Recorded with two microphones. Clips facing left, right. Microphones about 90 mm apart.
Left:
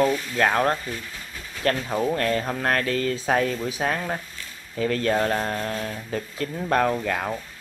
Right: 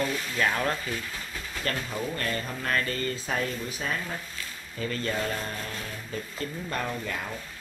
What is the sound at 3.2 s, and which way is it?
Speech, 70° left (ahead or behind).